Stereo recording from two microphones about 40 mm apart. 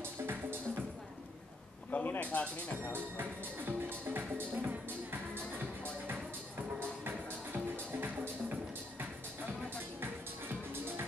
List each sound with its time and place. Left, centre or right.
0.0 s music: right
1.9 s a man's voice: left
2.9 s speech: right
6.8 s music: right